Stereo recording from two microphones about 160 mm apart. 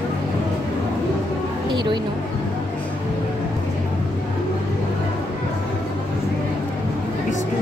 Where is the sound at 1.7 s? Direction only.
25° right (ahead or behind).